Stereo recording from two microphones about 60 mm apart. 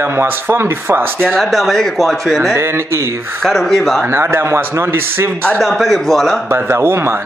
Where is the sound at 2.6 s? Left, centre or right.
Right.